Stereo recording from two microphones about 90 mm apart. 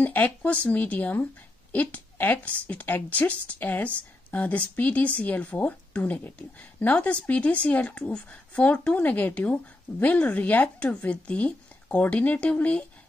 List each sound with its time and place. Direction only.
0.0 s a woman's voice: 20° left (ahead or behind)